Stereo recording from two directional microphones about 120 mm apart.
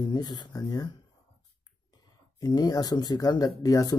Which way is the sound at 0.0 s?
35° left (ahead or behind).